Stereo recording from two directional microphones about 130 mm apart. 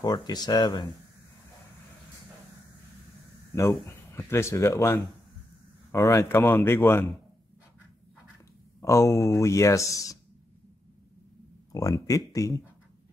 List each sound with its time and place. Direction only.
0.0 s speech: 30° left (ahead or behind)
3.8 s speech: 20° left (ahead or behind)
8.8 s speech: 25° left (ahead or behind)
11.7 s speech: 25° left (ahead or behind)